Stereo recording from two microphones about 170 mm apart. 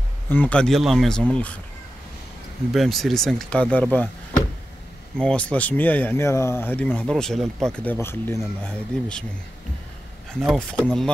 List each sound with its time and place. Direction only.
0.3 s speech: 10° left (ahead or behind)
2.7 s speech: centre (ahead or behind)
5.1 s speech: 5° left (ahead or behind)
10.4 s speech: centre (ahead or behind)